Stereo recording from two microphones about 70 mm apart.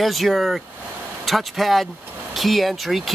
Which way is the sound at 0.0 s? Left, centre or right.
Centre.